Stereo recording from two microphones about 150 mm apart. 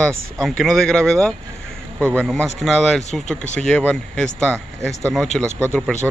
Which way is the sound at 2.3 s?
Centre (ahead or behind).